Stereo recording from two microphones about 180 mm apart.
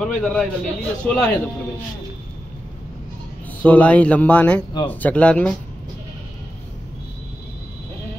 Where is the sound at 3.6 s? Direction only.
10° left (ahead or behind).